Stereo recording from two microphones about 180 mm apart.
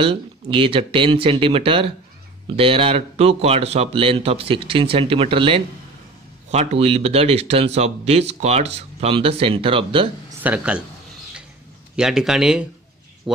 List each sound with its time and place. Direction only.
0.0 s speech: 30° right (ahead or behind)
10.4 s speech: 10° right (ahead or behind)
11.9 s speech: 5° right (ahead or behind)